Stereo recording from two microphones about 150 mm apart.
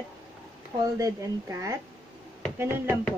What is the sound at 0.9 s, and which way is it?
Speech, 20° right (ahead or behind).